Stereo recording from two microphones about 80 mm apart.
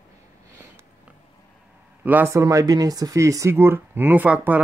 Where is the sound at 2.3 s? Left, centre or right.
Right.